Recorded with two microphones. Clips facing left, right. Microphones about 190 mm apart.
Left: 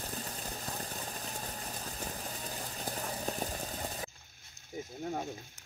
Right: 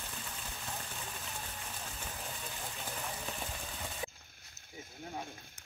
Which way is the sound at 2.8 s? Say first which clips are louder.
Left 6 dB; 40° left (ahead or behind).